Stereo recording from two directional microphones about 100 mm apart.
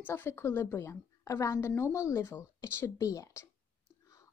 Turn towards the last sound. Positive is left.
turn(degrees=30)  # may be behind; listen again after turning